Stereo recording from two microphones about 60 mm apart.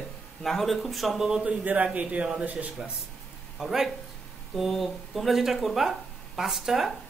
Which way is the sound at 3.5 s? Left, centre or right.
Centre.